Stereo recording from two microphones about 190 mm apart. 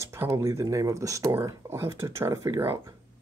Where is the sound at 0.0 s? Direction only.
15° right (ahead or behind).